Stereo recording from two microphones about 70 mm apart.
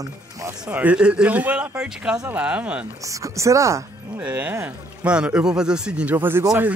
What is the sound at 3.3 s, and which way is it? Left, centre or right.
Speech, right.